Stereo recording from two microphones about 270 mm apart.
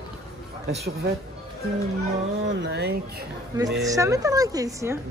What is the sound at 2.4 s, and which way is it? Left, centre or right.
Speech, right.